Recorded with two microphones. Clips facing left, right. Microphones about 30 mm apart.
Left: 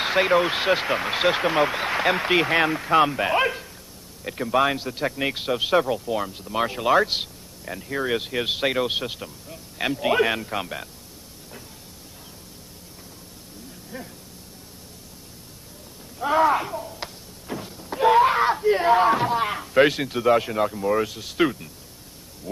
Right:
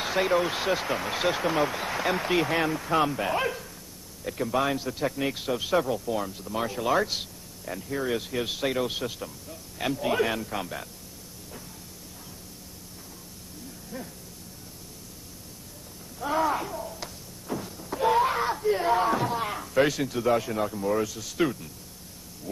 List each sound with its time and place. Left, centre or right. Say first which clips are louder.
0.0 s speech: left 5 dB; left
13.9 s speech: left 2 dB; left
16.2 s speech: left 6 dB; left
16.7 s a sound: left 3 dB; centre
17.0 s a sound: left 3 dB; left
17.9 s wail: left 6 dB; left
18.6 s speech: left 4 dB; left
20.7 s speech: left 4 dB; left
21.0 s speech: left 4 dB; left